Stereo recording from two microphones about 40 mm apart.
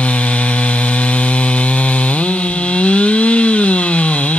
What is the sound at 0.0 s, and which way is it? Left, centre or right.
Chainsaw, left.